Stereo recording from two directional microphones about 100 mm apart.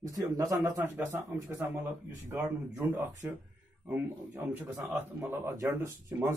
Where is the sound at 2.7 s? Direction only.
15° right (ahead or behind).